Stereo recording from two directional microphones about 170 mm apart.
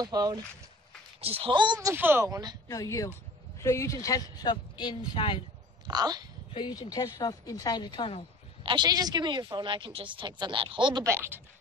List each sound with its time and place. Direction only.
0.0 s speech: 25° right (ahead or behind)
1.2 s speech: 35° right (ahead or behind)
2.7 s speech: 20° left (ahead or behind)
5.9 s speech: 25° right (ahead or behind)
6.5 s speech: 25° left (ahead or behind)
8.6 s speech: 25° right (ahead or behind)
11.1 s speech: 15° right (ahead or behind)